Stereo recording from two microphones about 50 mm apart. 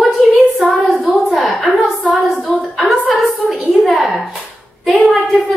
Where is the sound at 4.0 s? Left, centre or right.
Centre.